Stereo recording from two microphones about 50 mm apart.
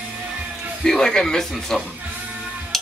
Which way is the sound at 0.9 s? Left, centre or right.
Centre.